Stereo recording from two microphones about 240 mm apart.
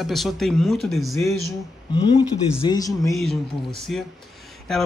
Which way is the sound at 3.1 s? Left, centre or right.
Centre.